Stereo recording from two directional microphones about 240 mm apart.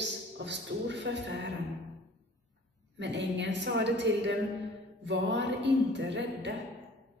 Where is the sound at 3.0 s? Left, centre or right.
Right.